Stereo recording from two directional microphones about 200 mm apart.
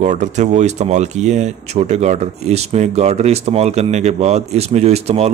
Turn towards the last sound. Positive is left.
turn(degrees=-30)  # may be behind; listen again after turning